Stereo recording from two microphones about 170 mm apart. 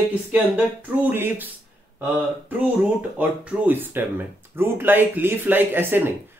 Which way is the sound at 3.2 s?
10° right (ahead or behind).